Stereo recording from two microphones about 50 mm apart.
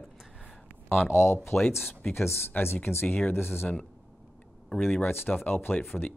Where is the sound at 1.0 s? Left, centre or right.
Left.